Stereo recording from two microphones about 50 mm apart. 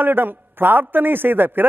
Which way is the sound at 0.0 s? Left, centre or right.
Right.